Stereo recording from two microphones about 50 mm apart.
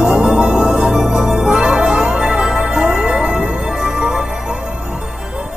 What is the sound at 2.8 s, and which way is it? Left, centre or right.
Music, right.